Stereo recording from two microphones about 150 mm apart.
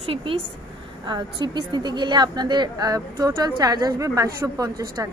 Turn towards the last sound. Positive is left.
turn(degrees=-25)  # may be behind; listen again after turning